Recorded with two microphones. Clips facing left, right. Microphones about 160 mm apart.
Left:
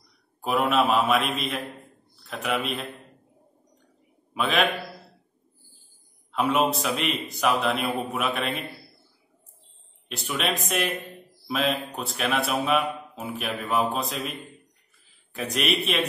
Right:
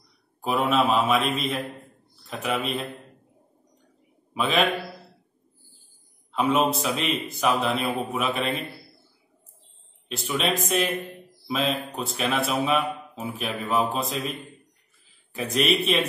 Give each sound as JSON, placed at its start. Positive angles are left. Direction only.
{"t": 0.4, "sound": "a man's voice", "side_deg": 0}
{"t": 1.3, "sound": "mantra", "side_deg": -30}
{"t": 2.2, "sound": "speech", "side_deg": 0}
{"t": 6.3, "sound": "speech", "side_deg": 0}
{"t": 10.0, "sound": "speech", "side_deg": 0}
{"t": 15.3, "sound": "speech", "side_deg": 0}